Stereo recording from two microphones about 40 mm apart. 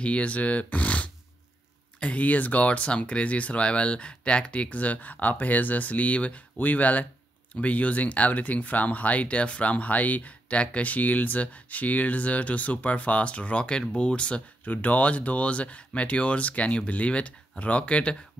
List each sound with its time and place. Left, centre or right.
0.0 s speech: left
14.6 s speech: left